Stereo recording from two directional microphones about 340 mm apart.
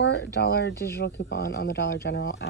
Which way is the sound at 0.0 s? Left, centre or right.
Left.